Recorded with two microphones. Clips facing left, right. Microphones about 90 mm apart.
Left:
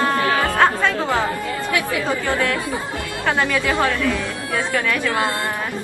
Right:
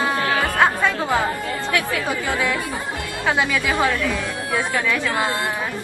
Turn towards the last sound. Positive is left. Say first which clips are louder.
# left 1 dB
turn(degrees=-15)  # may be behind; listen again after turning